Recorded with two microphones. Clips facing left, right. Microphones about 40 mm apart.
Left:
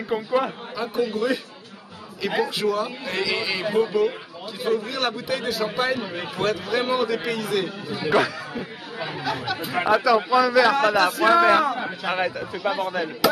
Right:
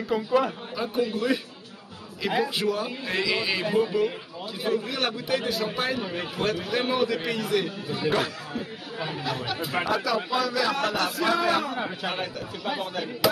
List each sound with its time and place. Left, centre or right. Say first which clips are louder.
0.1 s speech: left 1 dB; left
0.7 s a man's voice: left 3 dB; centre
9.8 s speech: left 10 dB; centre
10.7 s speech: left 7 dB; left
11.7 s speech: left 2 dB; centre